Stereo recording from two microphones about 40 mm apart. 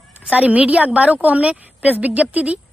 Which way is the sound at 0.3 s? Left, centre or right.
Right.